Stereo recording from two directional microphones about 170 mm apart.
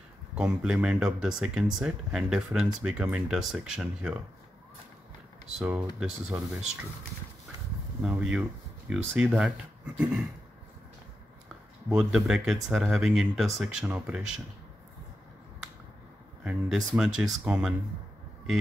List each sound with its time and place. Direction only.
0.3 s speech: 5° right (ahead or behind)
5.6 s speech: 10° right (ahead or behind)
8.0 s speech: 5° right (ahead or behind)
11.9 s speech: 5° right (ahead or behind)
16.4 s speech: 5° right (ahead or behind)